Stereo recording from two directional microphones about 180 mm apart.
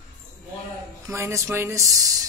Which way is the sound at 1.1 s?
15° right (ahead or behind).